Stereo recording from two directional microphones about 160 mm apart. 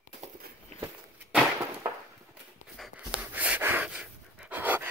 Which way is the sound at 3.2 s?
10° right (ahead or behind).